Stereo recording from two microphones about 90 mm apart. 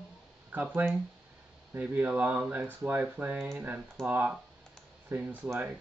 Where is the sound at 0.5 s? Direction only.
20° right (ahead or behind).